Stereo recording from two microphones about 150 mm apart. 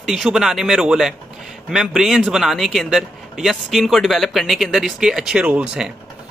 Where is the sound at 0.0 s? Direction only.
Centre (ahead or behind).